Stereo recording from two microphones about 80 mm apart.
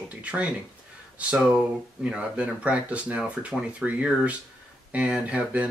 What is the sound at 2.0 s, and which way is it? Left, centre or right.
Speech, centre.